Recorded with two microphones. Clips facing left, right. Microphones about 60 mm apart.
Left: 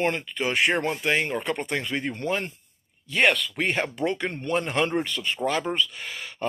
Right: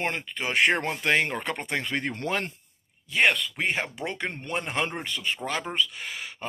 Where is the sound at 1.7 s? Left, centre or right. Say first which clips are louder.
Left 1 dB; right.